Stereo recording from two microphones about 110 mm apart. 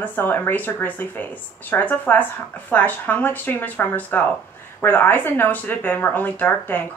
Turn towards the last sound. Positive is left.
turn(degrees=15)  # may be behind; listen again after turning